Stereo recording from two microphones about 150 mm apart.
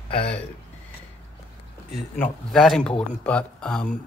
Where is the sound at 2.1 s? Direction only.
15° left (ahead or behind).